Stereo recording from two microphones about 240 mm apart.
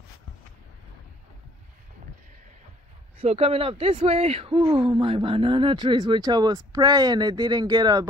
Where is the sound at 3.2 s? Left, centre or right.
Right.